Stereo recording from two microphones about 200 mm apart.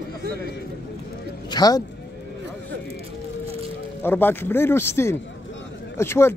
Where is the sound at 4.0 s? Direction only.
10° left (ahead or behind).